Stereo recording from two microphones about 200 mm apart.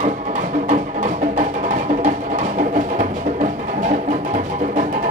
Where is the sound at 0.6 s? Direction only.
40° right (ahead or behind).